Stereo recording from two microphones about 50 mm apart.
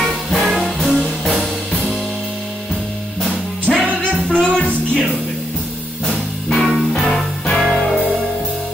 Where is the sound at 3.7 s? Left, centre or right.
Centre.